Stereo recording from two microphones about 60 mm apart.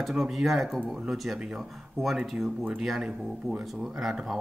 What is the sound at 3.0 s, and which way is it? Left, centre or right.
Speech, centre.